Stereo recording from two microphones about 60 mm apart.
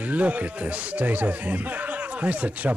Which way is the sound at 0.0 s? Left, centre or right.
Right.